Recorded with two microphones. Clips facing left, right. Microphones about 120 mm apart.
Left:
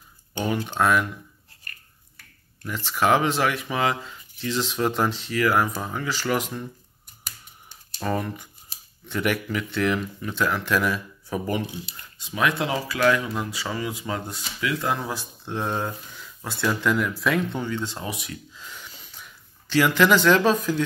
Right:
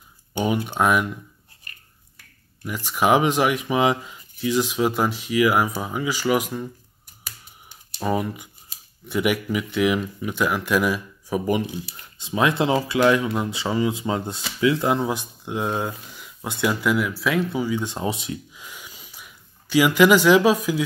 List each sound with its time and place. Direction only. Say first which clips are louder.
0.3 s speech: right 3 dB; 15° right (ahead or behind)
2.6 s speech: right 2 dB; 10° right (ahead or behind)
7.7 s typing: right 3 dB; 10° right (ahead or behind)
9.0 s speech: right 3 dB; 10° right (ahead or behind)
11.7 s speech: right 4 dB; 25° right (ahead or behind)
18.5 s a sound: even; 15° right (ahead or behind)